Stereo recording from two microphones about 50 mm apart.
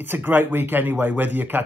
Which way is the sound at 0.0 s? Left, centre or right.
Right.